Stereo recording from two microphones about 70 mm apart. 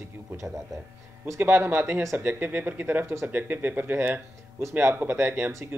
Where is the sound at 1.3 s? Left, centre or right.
Right.